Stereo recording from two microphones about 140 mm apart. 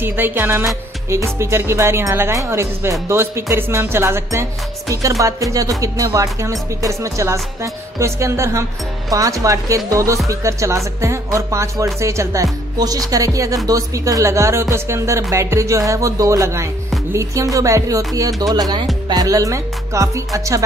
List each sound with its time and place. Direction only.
0.0 s music: 15° right (ahead or behind)
1.1 s speech: 20° right (ahead or behind)